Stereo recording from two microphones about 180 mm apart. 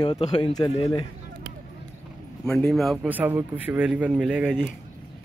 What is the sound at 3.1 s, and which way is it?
Speech, 10° right (ahead or behind).